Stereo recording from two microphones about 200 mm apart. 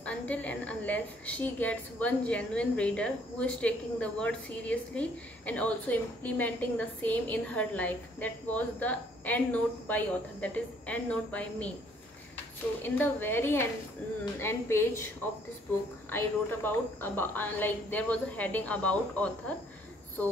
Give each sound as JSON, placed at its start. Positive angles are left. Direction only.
{"t": 0.0, "sound": "a woman's voice", "side_deg": 5}
{"t": 12.8, "sound": "a woman's voice", "side_deg": 10}
{"t": 16.1, "sound": "a woman's voice", "side_deg": 10}